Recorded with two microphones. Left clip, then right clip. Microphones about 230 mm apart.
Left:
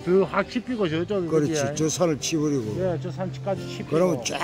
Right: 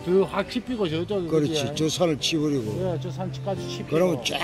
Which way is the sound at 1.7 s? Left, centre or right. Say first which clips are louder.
Even; centre.